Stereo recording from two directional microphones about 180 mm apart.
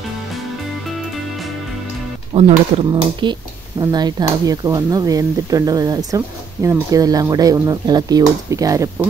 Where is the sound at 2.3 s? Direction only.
35° right (ahead or behind).